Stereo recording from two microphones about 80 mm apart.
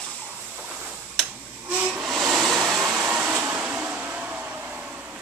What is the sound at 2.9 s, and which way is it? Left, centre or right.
Vehicle, centre.